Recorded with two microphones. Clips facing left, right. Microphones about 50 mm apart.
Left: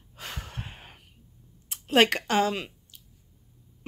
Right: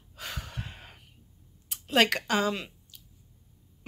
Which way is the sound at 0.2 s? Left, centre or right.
Left.